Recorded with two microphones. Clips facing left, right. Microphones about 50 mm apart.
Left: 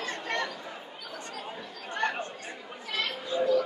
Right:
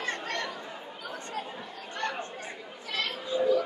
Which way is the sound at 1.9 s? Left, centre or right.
Left.